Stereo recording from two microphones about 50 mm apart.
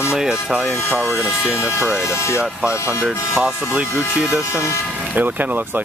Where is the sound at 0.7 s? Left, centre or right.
Left.